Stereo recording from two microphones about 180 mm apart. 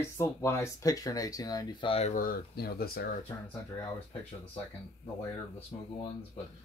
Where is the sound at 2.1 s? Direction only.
50° left (ahead or behind).